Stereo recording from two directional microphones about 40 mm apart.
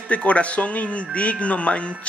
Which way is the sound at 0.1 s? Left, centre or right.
Left.